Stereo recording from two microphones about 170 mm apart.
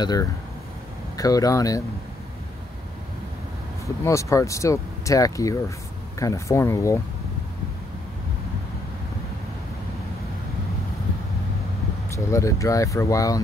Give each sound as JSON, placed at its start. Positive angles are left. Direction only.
{"t": 0.0, "sound": "speech", "side_deg": 25}
{"t": 3.8, "sound": "speech", "side_deg": 15}
{"t": 12.3, "sound": "speech", "side_deg": 20}